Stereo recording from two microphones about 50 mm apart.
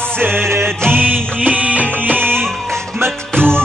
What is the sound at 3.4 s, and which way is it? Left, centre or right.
Music, centre.